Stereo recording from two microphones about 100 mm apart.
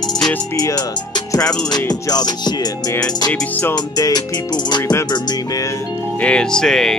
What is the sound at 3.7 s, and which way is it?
Music, 40° left (ahead or behind).